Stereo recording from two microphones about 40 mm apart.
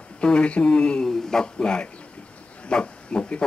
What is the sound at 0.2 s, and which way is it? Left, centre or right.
Speech, left.